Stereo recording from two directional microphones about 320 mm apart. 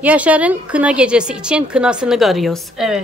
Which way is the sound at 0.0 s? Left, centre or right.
Centre.